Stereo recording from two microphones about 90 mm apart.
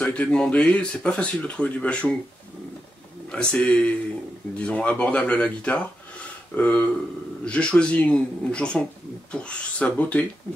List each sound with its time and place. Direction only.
0.0 s speech: 15° left (ahead or behind)
3.3 s speech: 10° left (ahead or behind)